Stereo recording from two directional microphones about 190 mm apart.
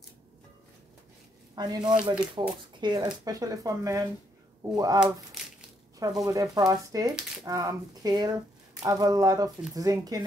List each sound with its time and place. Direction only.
1.5 s speech: 20° right (ahead or behind)